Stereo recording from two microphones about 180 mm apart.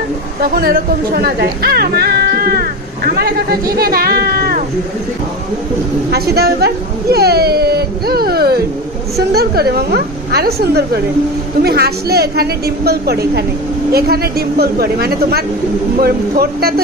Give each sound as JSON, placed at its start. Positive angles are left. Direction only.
{"t": 0.4, "sound": "speech", "side_deg": -55}
{"t": 6.1, "sound": "speech", "side_deg": -60}